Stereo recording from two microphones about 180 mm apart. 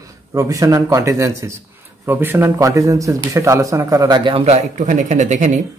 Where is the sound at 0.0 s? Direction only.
20° right (ahead or behind).